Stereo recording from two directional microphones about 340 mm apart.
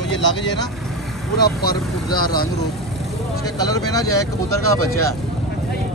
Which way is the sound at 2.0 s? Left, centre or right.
Centre.